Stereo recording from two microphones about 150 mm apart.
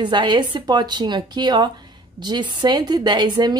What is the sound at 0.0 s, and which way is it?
A woman's voice, 30° right (ahead or behind).